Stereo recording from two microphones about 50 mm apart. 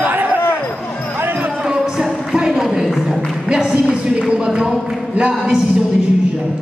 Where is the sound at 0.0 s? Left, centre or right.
Right.